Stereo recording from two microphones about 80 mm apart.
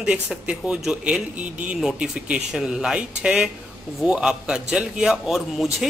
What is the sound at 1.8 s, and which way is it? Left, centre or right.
A man's voice, centre.